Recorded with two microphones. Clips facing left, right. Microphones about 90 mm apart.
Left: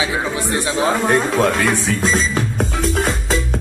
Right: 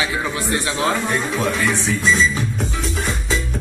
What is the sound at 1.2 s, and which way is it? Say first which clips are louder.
Speech: left 5 dB; 90° left.